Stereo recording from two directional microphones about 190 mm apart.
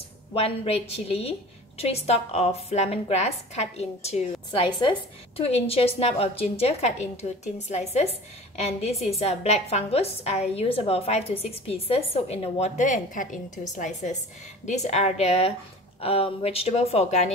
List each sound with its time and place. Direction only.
0.3 s a woman's voice: 30° left (ahead or behind)
4.5 s a woman's voice: 25° left (ahead or behind)